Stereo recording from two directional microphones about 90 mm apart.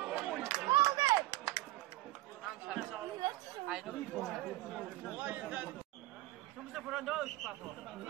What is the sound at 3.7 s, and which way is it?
Chatter, 5° right (ahead or behind).